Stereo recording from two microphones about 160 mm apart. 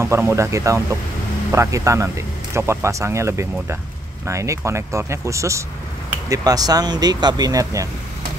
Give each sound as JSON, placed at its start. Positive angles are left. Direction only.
{"t": 0.0, "sound": "speech", "side_deg": -15}